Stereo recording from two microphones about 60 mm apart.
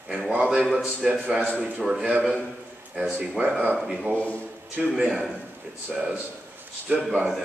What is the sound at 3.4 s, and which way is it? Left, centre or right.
Speech, centre.